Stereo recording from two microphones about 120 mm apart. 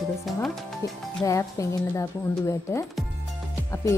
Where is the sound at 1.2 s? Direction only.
25° left (ahead or behind).